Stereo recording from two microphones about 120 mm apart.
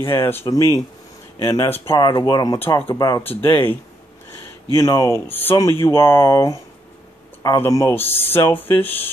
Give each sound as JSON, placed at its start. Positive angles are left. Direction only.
{"t": 0.1, "sound": "speech", "side_deg": 20}
{"t": 0.5, "sound": "speech", "side_deg": 30}
{"t": 2.0, "sound": "speech", "side_deg": 35}
{"t": 3.3, "sound": "speech", "side_deg": 15}
{"t": 4.7, "sound": "speech", "side_deg": 25}